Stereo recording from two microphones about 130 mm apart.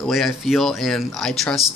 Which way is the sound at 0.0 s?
Centre (ahead or behind).